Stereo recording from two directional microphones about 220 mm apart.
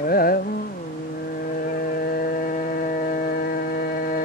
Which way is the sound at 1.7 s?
45° left (ahead or behind).